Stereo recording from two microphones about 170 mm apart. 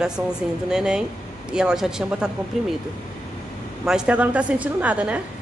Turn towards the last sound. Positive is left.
turn(degrees=-10)  # may be behind; listen again after turning